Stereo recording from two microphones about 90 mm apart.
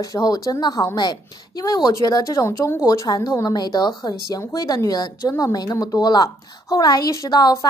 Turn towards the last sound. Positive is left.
turn(degrees=50)  # may be behind; listen again after turning